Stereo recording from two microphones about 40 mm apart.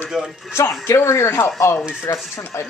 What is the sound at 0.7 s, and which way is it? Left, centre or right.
Speech, left.